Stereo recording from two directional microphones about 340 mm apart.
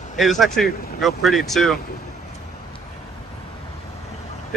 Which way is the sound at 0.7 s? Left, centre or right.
Left.